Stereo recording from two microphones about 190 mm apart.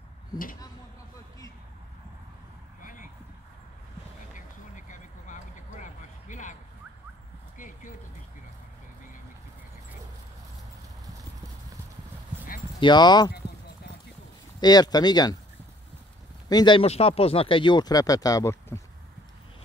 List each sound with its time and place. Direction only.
2.8 s vehicle: 45° left (ahead or behind)
4.3 s a sound: 40° left (ahead or behind)
7.5 s a sound: 45° left (ahead or behind)
12.8 s speech: 20° left (ahead or behind)
14.6 s speech: 20° left (ahead or behind)
16.4 s speech: 20° left (ahead or behind)